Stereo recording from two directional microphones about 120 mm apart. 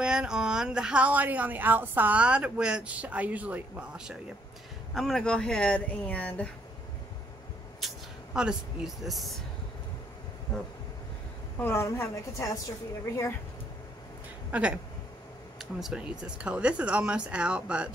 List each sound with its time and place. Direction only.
0.0 s speech: 5° right (ahead or behind); by 6.5 s 10° left (ahead or behind)
7.8 s speech: 5° right (ahead or behind)
11.5 s a woman's voice: 20° left (ahead or behind)
14.5 s speech: 10° right (ahead or behind)
15.8 s speech: 5° right (ahead or behind)